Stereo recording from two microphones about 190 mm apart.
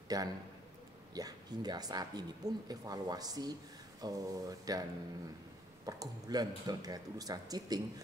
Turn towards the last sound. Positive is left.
turn(degrees=-20)  # may be behind; listen again after turning